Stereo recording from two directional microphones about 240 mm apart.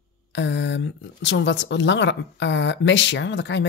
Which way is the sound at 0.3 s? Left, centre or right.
Left.